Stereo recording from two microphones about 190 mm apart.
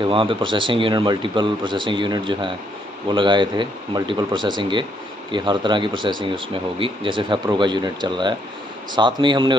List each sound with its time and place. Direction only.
0.0 s speech: 25° right (ahead or behind)